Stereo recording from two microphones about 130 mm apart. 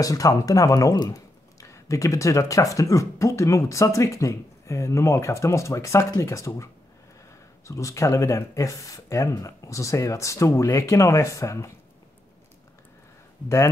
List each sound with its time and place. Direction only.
0.0 s speech: 25° left (ahead or behind)